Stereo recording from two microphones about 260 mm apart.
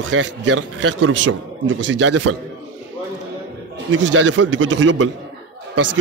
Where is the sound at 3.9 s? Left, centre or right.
Right.